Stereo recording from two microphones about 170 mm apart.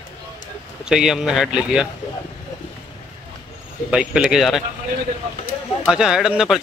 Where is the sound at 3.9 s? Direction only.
5° right (ahead or behind).